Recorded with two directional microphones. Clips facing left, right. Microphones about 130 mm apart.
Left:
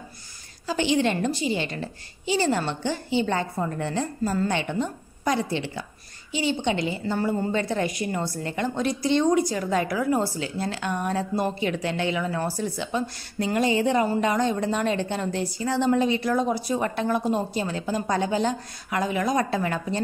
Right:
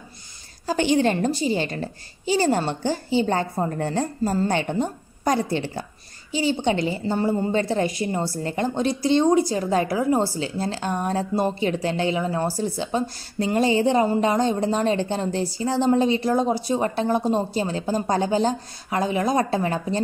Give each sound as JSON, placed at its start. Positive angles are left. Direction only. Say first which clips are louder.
{"t": 0.7, "sound": "a woman's voice", "louder": "right 3 dB", "side_deg": -45}